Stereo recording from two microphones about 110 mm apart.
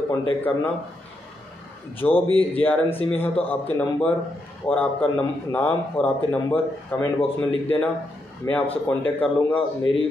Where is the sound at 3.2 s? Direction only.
15° left (ahead or behind).